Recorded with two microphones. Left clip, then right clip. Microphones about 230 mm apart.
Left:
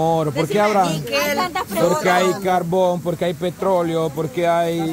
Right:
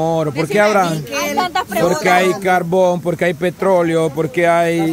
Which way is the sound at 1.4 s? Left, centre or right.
Centre.